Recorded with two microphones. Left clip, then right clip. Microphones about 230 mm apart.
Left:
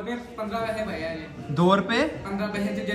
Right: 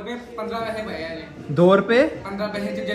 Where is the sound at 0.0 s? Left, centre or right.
Centre.